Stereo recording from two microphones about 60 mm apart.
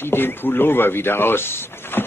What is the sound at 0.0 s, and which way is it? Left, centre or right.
A man's voice, left.